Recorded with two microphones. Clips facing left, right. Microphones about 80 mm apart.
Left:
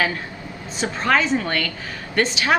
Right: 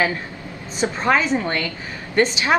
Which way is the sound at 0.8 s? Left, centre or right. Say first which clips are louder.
Right 1 dB; centre.